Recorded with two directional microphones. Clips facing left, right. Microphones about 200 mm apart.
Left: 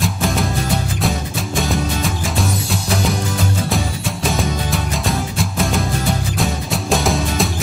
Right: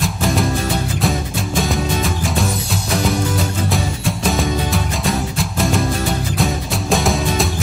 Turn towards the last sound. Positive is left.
turn(degrees=0)  # may be behind; listen again after turning